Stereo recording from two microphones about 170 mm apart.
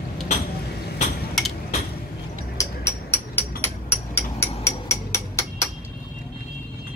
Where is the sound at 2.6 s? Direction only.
15° left (ahead or behind).